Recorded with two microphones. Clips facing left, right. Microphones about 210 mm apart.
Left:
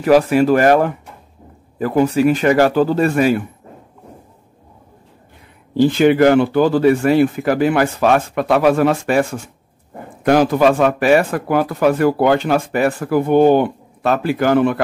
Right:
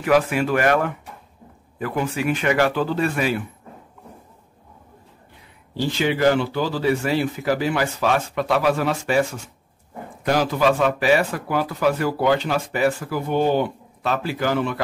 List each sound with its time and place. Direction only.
0.0 s speech: 40° left (ahead or behind)
5.8 s speech: 55° left (ahead or behind)